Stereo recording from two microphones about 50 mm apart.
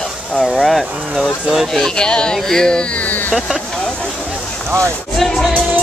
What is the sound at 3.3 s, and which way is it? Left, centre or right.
Speech, centre.